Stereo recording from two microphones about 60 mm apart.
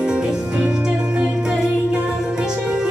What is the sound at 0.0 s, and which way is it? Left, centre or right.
Music, centre.